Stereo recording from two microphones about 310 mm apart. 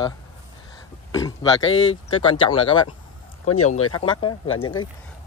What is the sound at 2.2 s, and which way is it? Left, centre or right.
Speech, centre.